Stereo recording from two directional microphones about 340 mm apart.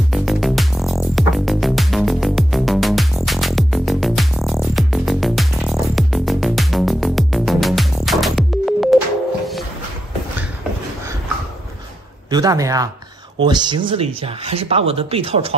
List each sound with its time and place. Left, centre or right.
0.1 s music: centre
12.3 s speech: centre